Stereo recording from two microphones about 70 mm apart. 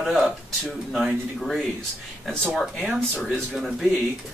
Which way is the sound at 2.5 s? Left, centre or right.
Centre.